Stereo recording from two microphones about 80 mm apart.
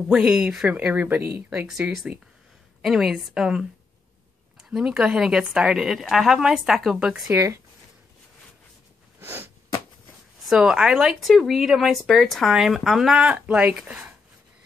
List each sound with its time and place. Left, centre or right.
0.1 s a woman's voice: centre
0.7 s speech: right
1.7 s a woman's voice: centre
7.2 s speech: right
9.2 s sniff: right
10.4 s speech: centre